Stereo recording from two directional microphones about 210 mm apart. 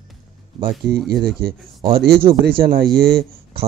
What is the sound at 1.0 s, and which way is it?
Speech, 50° right (ahead or behind).